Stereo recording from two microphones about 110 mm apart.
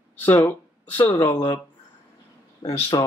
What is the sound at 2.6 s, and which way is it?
Speech, 35° left (ahead or behind).